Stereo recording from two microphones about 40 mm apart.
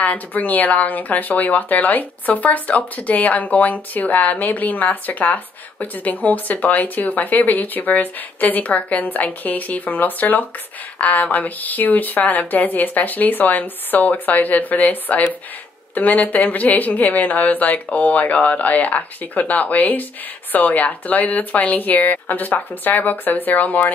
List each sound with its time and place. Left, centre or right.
0.0 s speech: left